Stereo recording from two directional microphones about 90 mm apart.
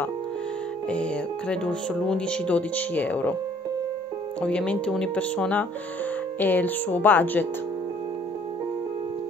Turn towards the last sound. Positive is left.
turn(degrees=20)  # may be behind; listen again after turning